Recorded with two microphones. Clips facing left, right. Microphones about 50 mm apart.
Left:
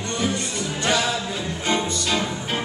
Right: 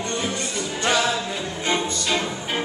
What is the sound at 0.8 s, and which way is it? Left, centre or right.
Music, centre.